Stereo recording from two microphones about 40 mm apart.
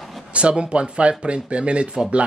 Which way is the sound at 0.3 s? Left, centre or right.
Right.